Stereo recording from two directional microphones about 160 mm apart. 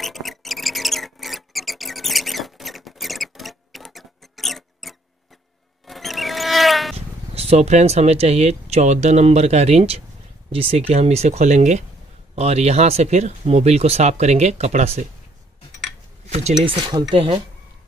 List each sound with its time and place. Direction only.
0.0 s mouse: centre (ahead or behind)
5.9 s rodents: centre (ahead or behind)
7.3 s speech: 40° right (ahead or behind)
16.6 s speech: 25° right (ahead or behind)